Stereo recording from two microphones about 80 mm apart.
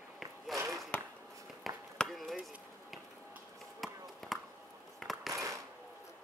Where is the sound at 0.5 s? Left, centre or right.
Centre.